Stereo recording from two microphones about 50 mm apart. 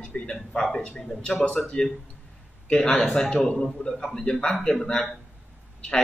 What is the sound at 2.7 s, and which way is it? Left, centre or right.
Speech, centre.